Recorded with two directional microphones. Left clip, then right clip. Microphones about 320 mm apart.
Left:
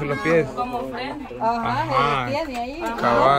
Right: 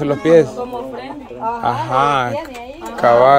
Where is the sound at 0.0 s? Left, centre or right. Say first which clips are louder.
Right 6 dB; centre.